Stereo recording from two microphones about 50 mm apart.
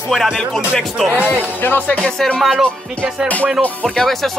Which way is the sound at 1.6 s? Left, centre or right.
Left.